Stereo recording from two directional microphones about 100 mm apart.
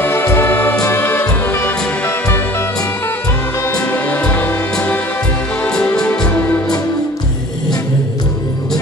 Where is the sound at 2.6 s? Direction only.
35° left (ahead or behind).